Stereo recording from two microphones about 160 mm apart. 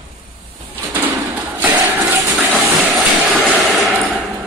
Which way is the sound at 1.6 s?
10° right (ahead or behind).